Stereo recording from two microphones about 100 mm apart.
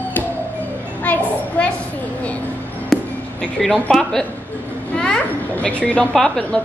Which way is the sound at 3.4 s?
5° left (ahead or behind).